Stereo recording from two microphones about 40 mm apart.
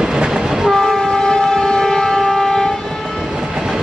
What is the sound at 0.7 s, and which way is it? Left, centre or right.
Train, centre.